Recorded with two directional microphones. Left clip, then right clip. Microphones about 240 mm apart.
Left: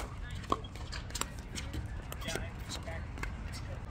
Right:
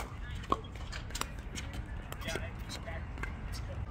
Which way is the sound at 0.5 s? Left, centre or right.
Centre.